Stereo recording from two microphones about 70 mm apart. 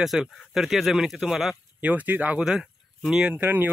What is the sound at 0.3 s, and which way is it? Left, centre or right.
Speech, centre.